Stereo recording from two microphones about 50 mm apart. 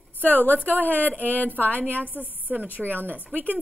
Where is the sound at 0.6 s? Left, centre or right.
Right.